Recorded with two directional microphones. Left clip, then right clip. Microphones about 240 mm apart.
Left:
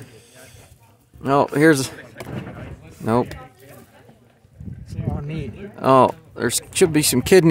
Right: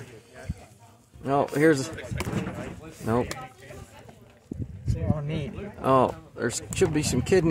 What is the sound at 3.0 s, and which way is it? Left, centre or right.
Speech, left.